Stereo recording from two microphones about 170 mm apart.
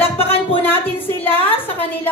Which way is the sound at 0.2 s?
35° left (ahead or behind).